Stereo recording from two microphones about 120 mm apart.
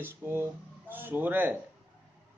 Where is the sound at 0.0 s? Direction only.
20° right (ahead or behind).